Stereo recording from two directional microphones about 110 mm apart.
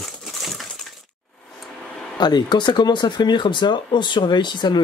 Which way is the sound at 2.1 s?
40° left (ahead or behind).